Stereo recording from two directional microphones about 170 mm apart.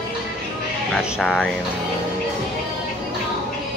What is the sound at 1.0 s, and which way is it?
Speech, 5° right (ahead or behind).